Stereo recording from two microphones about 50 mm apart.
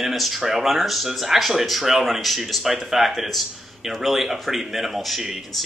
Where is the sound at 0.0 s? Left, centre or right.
Centre.